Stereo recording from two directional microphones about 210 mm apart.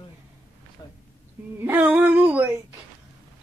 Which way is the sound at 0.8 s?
20° left (ahead or behind).